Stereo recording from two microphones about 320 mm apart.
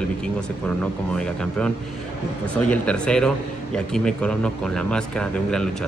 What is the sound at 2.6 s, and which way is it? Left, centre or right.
Speech, centre.